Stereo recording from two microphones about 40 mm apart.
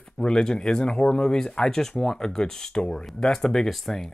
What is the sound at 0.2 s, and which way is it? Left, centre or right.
Speech, centre.